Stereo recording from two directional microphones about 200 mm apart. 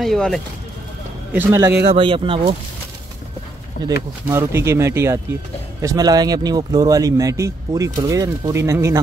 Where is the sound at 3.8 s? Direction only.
45° left (ahead or behind).